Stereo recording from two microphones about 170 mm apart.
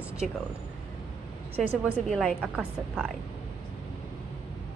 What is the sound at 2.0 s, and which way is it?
A woman's voice, centre (ahead or behind).